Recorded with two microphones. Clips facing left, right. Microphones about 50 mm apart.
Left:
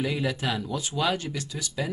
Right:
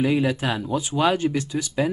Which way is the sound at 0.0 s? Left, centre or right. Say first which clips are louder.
Right 6 dB; right.